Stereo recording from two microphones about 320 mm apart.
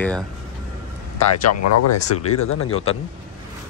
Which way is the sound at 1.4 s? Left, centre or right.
Left.